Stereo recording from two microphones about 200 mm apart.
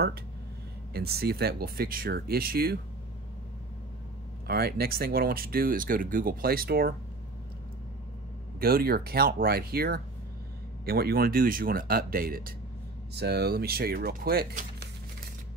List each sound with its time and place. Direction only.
0.9 s speech: 50° right (ahead or behind)
4.5 s speech: 50° right (ahead or behind)
8.5 s speech: 50° right (ahead or behind)